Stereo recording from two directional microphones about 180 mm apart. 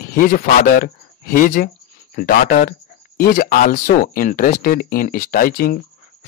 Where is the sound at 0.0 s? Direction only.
50° left (ahead or behind).